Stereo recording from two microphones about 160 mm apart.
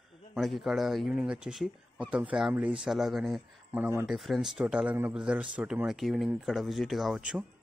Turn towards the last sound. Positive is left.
turn(degrees=-5)  # may be behind; listen again after turning